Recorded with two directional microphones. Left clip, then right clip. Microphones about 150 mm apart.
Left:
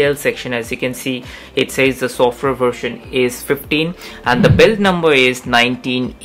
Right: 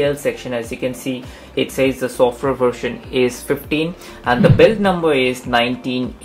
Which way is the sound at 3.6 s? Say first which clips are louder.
Left 3 dB; 35° left (ahead or behind).